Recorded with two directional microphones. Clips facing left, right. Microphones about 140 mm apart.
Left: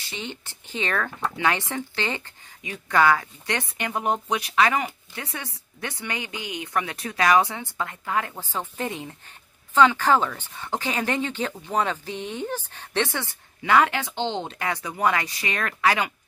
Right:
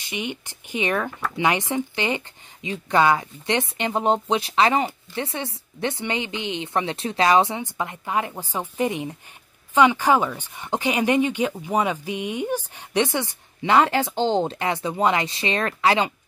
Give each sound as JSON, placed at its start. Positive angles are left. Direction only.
{"t": 0.0, "sound": "speech", "side_deg": -15}
{"t": 14.6, "sound": "speech", "side_deg": -25}